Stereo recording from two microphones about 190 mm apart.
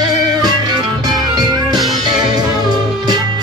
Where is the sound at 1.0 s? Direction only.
20° right (ahead or behind).